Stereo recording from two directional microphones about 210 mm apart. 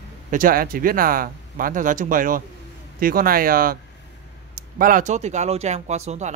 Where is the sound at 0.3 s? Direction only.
40° right (ahead or behind).